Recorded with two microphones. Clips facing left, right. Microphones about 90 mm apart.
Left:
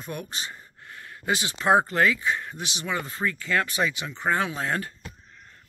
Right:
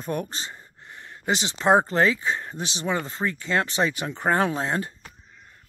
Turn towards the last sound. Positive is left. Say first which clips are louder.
# right 2 dB
turn(degrees=-25)  # may be behind; listen again after turning